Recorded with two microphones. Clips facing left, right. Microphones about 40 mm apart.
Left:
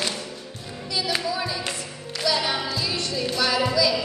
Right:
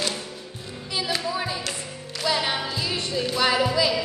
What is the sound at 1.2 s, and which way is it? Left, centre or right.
Music, right.